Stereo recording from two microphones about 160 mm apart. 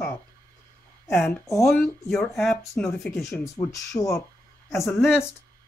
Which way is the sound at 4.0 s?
20° left (ahead or behind).